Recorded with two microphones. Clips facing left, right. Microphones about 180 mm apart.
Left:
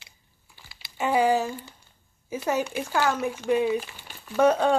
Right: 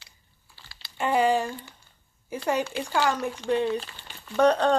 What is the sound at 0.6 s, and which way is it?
Typing, 15° left (ahead or behind).